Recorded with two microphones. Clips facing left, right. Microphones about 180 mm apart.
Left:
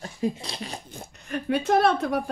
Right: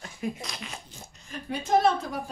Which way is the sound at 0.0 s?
30° left (ahead or behind).